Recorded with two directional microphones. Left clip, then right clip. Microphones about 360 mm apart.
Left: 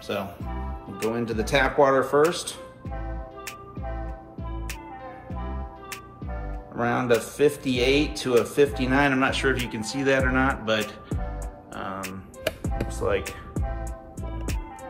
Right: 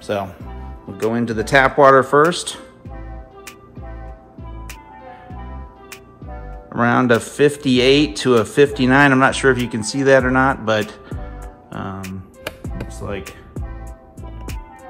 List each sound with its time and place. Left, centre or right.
0.0 s a man's voice: centre
6.7 s a man's voice: right
12.4 s music: centre